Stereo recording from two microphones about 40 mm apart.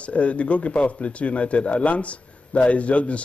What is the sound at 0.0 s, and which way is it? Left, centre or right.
Speech, left.